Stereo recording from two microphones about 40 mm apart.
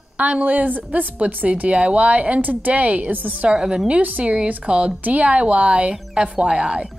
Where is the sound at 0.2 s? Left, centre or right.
Right.